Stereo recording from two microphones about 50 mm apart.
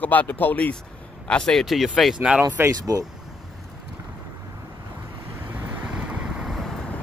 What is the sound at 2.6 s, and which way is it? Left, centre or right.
Speech, right.